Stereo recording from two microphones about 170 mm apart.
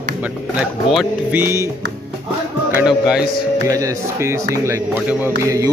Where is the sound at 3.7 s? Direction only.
20° right (ahead or behind).